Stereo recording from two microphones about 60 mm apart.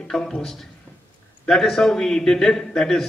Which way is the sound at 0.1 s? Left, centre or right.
Centre.